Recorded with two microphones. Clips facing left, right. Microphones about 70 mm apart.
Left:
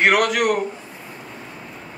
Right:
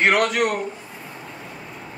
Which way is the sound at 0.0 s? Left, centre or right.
Centre.